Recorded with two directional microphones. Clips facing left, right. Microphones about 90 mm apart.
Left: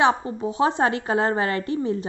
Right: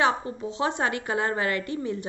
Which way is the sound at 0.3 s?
25° left (ahead or behind).